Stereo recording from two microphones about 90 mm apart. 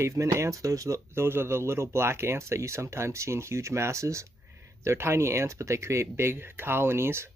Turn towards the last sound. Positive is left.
turn(degrees=-30)  # may be behind; listen again after turning